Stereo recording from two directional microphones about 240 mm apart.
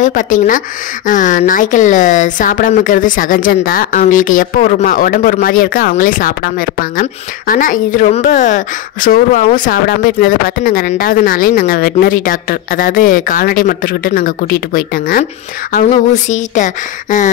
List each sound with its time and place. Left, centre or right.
0.0 s speech: left